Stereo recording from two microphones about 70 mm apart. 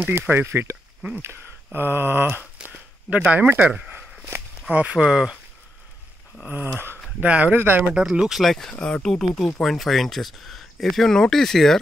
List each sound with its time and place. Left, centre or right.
0.3 s speech: right
1.2 s a sound: right
3.3 s speech: right
4.9 s speech: centre
6.4 s speech: right
7.2 s speech: right
7.9 s speech: centre
8.7 s speech: centre